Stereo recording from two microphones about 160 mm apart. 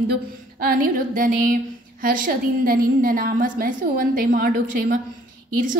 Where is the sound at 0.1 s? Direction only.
65° right (ahead or behind).